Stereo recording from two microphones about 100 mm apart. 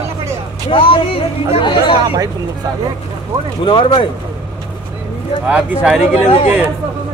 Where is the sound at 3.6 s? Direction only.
55° left (ahead or behind).